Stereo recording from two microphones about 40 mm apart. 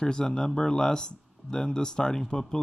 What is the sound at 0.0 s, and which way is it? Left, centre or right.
Speech, centre.